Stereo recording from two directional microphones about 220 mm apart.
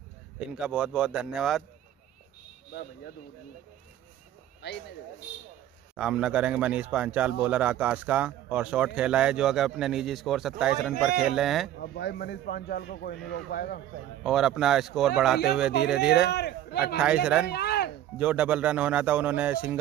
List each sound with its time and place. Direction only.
0.6 s speech: 5° right (ahead or behind)
4.6 s speech: 50° left (ahead or behind)
5.9 s speech: 5° right (ahead or behind)
11.8 s speech: 50° left (ahead or behind)
14.2 s speech: centre (ahead or behind)
16.3 s speech: 50° left (ahead or behind)
17.0 s speech: 5° right (ahead or behind)
17.5 s speech: 50° left (ahead or behind)
18.1 s speech: 5° right (ahead or behind)